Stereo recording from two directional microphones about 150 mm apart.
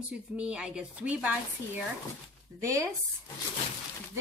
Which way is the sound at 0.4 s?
5° right (ahead or behind).